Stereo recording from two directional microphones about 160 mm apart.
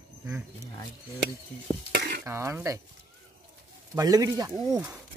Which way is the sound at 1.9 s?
80° right.